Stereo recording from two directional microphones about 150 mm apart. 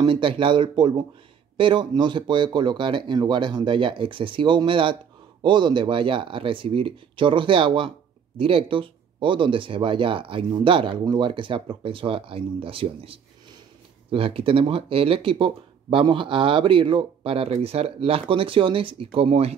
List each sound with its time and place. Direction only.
0.0 s speech: 35° right (ahead or behind)